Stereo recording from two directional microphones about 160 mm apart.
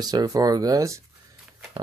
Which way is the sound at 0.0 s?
25° right (ahead or behind).